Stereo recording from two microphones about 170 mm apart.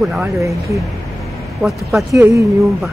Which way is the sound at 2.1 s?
20° right (ahead or behind).